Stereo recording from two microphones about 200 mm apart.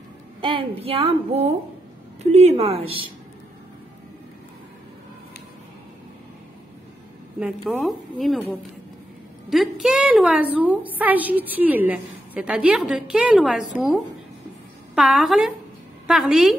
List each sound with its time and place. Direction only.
0.4 s a woman's voice: 25° right (ahead or behind)
7.3 s a woman's voice: 5° right (ahead or behind)
15.0 s a woman's voice: centre (ahead or behind)